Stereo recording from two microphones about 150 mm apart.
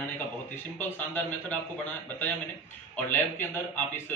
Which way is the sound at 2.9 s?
10° left (ahead or behind).